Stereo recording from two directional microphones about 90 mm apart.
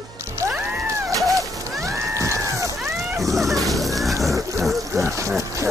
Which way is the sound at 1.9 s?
35° right (ahead or behind).